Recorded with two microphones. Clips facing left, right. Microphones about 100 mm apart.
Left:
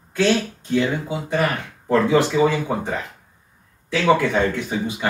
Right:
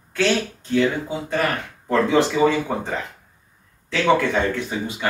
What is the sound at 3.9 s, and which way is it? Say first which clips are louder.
Speech: left 1 dB; 15° left (ahead or behind).